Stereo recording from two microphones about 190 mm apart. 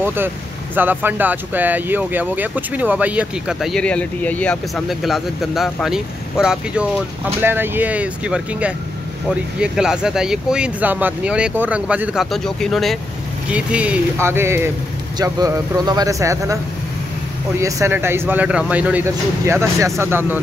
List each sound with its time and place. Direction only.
0.0 s speech: 10° right (ahead or behind)
17.6 s speech: 15° right (ahead or behind)